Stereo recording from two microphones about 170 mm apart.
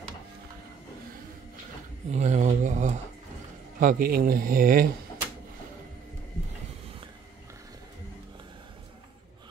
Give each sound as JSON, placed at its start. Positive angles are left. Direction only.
{"t": 2.0, "sound": "speech", "side_deg": -40}
{"t": 3.8, "sound": "speech", "side_deg": -60}